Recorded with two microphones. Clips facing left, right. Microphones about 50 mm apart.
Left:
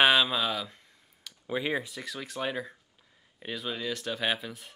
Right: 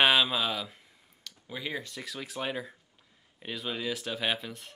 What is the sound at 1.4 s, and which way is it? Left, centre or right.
Speech, left.